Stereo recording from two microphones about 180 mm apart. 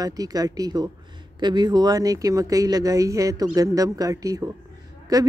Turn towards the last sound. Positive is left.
turn(degrees=-20)  # may be behind; listen again after turning